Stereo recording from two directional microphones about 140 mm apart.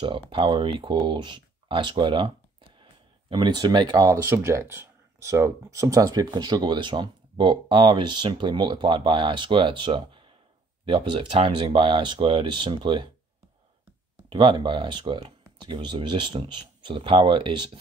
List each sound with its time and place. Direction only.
0.3 s speech: 35° right (ahead or behind)
14.3 s speech: 35° right (ahead or behind)